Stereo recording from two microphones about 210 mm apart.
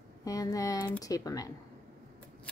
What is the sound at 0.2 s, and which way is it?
A woman's voice, 15° left (ahead or behind).